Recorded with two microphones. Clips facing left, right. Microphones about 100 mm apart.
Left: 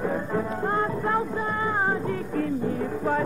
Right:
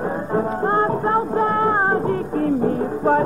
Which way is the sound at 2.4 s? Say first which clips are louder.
Right 7 dB; 40° right (ahead or behind).